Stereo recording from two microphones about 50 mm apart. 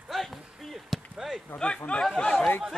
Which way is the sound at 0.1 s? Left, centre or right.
Centre.